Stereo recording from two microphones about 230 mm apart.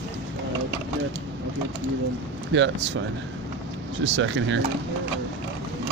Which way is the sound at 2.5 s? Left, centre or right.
Right.